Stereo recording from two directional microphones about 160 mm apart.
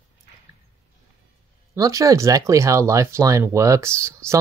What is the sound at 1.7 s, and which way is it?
Speech, 20° right (ahead or behind).